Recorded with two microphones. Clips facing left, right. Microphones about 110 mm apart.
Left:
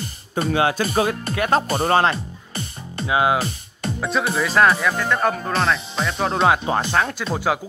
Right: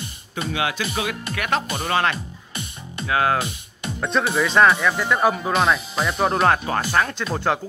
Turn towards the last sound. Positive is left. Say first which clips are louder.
# left 1 dB
turn(degrees=5)  # may be behind; listen again after turning